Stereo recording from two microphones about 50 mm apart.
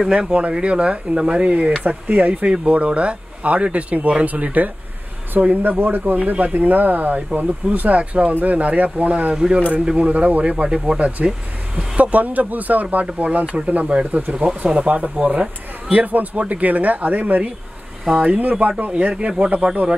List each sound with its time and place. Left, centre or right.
0.0 s speech: centre; by 4.6 s right
5.6 s speech: right
9.3 s speech: centre